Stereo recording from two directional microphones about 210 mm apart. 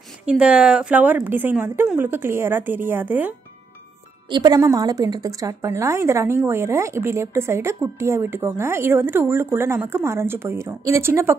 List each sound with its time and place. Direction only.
0.2 s a woman's voice: 5° right (ahead or behind)
4.3 s a woman's voice: 20° right (ahead or behind)